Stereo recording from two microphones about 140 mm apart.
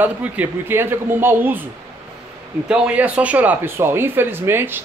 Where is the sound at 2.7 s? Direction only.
10° right (ahead or behind).